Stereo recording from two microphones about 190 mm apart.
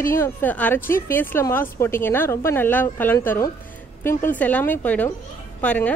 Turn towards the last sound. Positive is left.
turn(degrees=10)  # may be behind; listen again after turning